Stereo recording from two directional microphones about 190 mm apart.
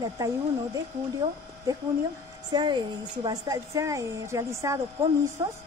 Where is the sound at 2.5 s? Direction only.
20° right (ahead or behind).